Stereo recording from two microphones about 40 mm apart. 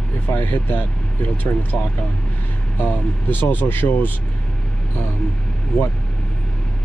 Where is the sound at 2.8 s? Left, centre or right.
Left.